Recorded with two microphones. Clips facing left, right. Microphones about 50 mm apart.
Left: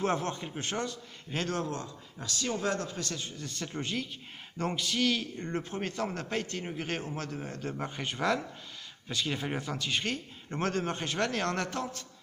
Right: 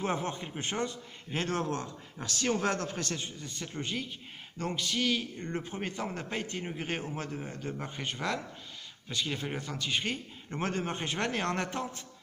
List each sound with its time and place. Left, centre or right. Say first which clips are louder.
0.0 s speech: left 2 dB; centre
1.6 s speech: right 2 dB; right
3.2 s a man's voice: left 1 dB; centre